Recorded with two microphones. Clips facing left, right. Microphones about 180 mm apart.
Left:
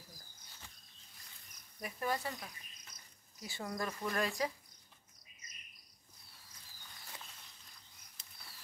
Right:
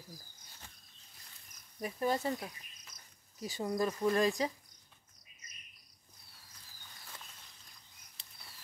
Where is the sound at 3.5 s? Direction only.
20° right (ahead or behind).